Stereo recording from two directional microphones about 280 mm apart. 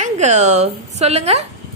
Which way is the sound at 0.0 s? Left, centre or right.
Right.